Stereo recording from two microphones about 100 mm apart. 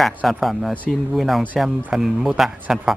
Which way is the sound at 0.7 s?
15° left (ahead or behind).